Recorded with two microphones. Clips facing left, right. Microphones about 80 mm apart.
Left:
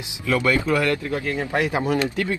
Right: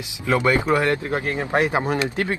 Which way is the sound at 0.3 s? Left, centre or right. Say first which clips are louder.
Right 2 dB; right.